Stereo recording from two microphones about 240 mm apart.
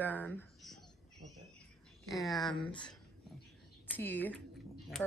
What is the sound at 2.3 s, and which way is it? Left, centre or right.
Speech, centre.